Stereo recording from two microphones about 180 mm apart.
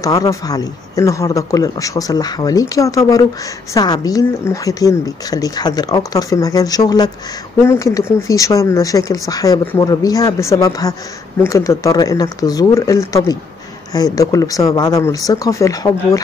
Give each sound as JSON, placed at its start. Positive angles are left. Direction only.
{"t": 0.0, "sound": "speech", "side_deg": 20}